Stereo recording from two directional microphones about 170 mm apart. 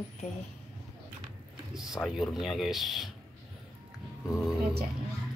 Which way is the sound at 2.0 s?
Centre (ahead or behind).